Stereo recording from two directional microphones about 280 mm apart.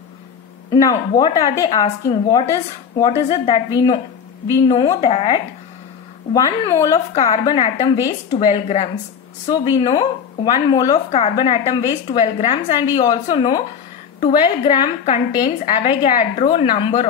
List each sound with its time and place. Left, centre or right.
0.7 s a woman's voice: centre